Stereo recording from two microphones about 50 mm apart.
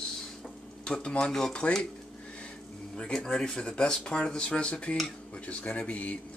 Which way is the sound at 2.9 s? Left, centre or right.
Centre.